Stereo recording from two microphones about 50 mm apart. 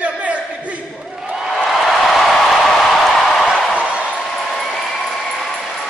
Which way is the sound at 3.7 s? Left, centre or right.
Centre.